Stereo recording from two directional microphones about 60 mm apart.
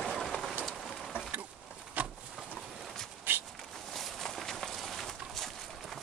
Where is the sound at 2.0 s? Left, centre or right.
Right.